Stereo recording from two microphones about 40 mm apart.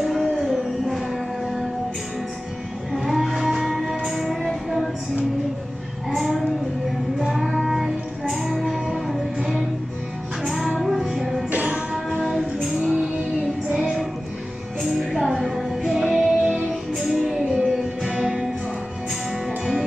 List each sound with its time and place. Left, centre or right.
0.0 s music: centre
2.9 s music: centre
6.0 s child singing: centre
7.2 s music: centre
11.5 s music: right
11.9 s music: centre